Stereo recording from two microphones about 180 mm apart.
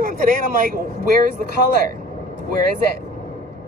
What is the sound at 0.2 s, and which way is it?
Speech, 50° right (ahead or behind).